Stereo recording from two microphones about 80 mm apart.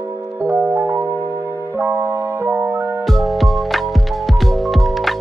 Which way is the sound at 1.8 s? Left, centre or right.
Right.